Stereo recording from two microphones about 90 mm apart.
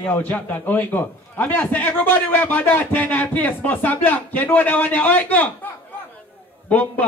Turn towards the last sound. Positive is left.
turn(degrees=15)  # may be behind; listen again after turning